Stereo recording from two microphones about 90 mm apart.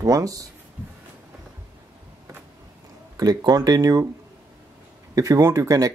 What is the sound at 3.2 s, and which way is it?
Speech, 45° right (ahead or behind).